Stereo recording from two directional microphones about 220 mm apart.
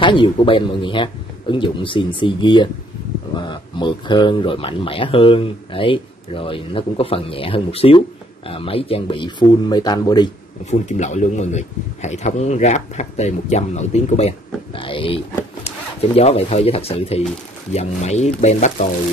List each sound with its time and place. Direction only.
0.0 s speech: 20° left (ahead or behind)
10.7 s speech: 30° left (ahead or behind)